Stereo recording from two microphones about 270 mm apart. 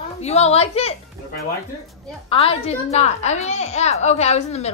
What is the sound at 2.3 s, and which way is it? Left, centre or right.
A woman's voice, left.